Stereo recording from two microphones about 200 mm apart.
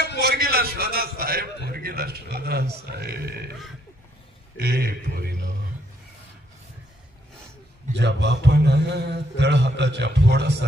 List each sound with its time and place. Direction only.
0.2 s a sound: 50° right (ahead or behind)
1.7 s a man's voice: 50° right (ahead or behind)
4.6 s a man's voice: 50° right (ahead or behind)
8.0 s a man's voice: 60° right (ahead or behind)